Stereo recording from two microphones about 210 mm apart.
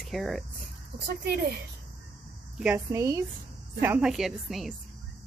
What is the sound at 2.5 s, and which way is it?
Speech, 10° right (ahead or behind).